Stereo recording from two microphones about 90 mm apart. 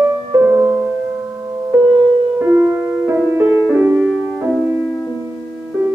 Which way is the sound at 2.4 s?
20° right (ahead or behind).